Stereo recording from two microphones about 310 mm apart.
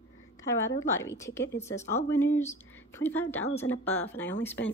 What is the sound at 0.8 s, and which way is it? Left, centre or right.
A woman's voice, centre.